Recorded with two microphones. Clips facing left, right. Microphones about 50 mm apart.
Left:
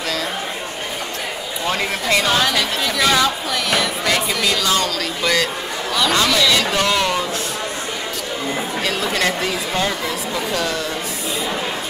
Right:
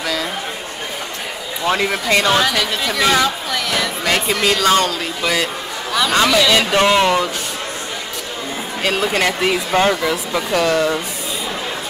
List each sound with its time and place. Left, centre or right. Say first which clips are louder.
1.7 s speech: right 3 dB; right
3.5 s speech: even; centre
4.0 s speech: right 2 dB; right
4.5 s speech: right 6 dB; right
5.2 s speech: even; centre
6.5 s speech: right 4 dB; right
8.8 s speech: right 4 dB; right
9.5 s speech: right 5 dB; right